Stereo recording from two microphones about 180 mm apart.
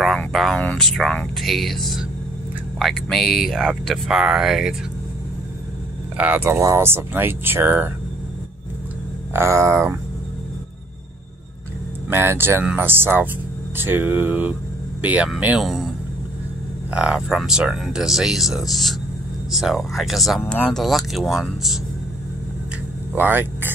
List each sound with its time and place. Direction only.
0.0 s speech: centre (ahead or behind)
6.1 s speech: 10° right (ahead or behind)
9.3 s speech: 15° right (ahead or behind)
12.1 s speech: 10° right (ahead or behind)
16.9 s speech: 5° right (ahead or behind)
23.1 s speech: 10° right (ahead or behind)